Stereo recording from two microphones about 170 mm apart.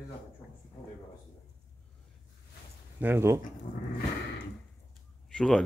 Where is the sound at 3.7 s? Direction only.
45° left (ahead or behind).